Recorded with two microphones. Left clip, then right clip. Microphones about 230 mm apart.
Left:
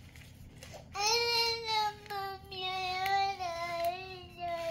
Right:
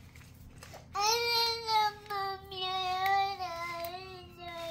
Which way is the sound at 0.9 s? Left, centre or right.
Right.